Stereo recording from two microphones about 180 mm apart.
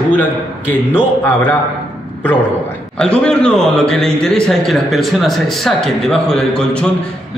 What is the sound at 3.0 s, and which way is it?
A man's voice, 5° left (ahead or behind).